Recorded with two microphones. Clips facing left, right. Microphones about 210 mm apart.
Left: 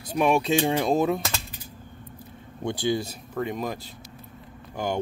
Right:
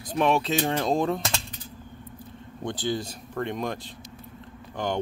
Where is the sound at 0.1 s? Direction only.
10° left (ahead or behind).